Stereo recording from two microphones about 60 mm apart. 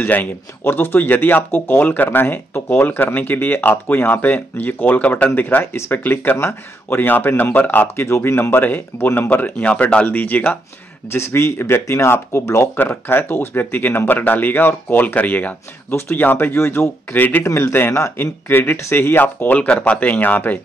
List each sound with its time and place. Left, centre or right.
0.0 s speech: left
11.1 s speech: left
12.7 s speech: left
15.9 s speech: left
17.1 s speech: left
17.7 s speech: left
18.1 s speech: left